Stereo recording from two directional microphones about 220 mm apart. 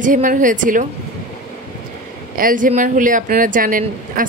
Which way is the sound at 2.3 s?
40° right (ahead or behind).